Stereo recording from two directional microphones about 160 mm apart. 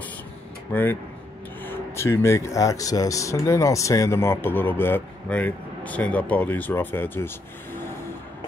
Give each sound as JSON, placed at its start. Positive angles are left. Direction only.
{"t": 0.7, "sound": "speech", "side_deg": 10}